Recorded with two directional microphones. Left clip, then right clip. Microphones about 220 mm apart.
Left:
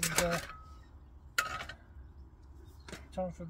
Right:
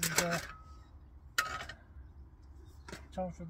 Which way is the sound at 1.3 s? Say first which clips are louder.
Left 1 dB; 5° right (ahead or behind).